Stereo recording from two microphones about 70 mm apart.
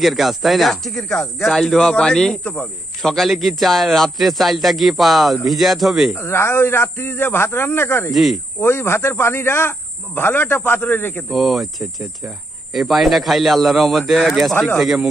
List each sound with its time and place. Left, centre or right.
0.0 s speech: centre
3.0 s speech: centre
6.1 s speech: left
8.1 s speech: centre
8.5 s speech: left
11.3 s speech: centre